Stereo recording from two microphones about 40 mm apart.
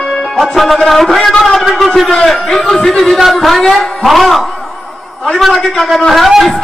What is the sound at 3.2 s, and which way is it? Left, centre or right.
Music, centre.